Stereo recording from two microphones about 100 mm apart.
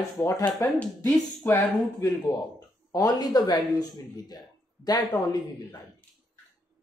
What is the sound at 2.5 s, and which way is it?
Speech, 40° left (ahead or behind).